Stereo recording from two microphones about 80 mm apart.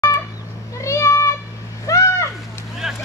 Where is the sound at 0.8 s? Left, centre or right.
Left.